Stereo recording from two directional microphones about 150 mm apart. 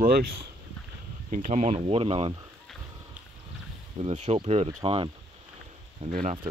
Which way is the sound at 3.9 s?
50° right (ahead or behind).